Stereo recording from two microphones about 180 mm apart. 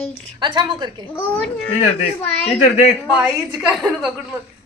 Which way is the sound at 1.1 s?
10° left (ahead or behind).